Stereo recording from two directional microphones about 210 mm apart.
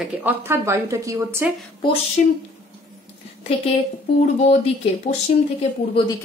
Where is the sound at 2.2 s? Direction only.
40° left (ahead or behind).